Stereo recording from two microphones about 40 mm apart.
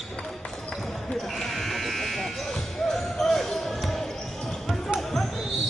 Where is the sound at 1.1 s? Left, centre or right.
Centre.